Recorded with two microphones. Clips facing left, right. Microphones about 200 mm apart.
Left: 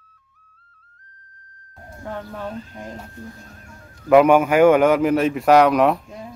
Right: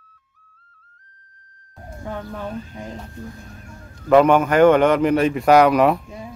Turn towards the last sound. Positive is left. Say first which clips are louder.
# right 1 dB
turn(degrees=0)  # may be behind; listen again after turning